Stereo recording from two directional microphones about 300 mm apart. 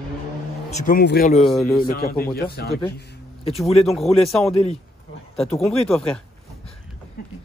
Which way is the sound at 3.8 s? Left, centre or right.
Centre.